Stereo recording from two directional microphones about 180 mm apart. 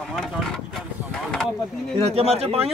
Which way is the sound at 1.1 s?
5° left (ahead or behind).